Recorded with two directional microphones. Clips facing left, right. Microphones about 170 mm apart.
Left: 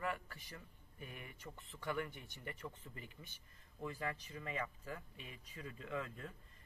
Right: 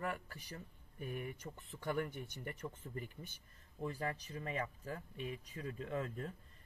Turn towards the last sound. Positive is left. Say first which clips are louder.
# right 3 dB
turn(degrees=-40)  # may be behind; listen again after turning